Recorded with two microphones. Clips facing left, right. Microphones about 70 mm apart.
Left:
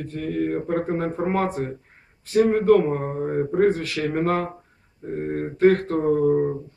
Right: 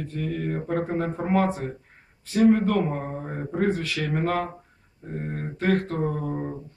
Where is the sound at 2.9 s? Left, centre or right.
Centre.